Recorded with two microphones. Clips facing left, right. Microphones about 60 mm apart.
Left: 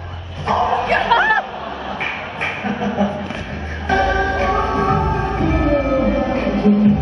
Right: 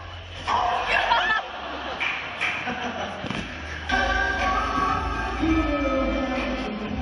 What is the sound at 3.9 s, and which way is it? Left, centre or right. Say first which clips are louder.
Music: left 6 dB; left.